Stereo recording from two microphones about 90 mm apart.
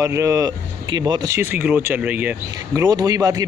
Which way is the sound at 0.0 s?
35° right (ahead or behind).